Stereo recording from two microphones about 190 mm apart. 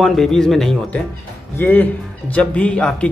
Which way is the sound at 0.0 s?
Centre (ahead or behind).